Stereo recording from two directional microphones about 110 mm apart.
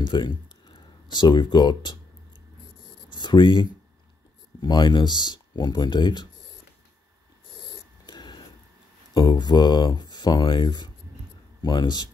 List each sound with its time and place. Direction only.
0.0 s speech: 45° left (ahead or behind)
3.1 s a sound: 45° left (ahead or behind)
4.6 s speech: 40° left (ahead or behind)
8.1 s vehicle: 40° left (ahead or behind)
9.1 s speech: 40° left (ahead or behind)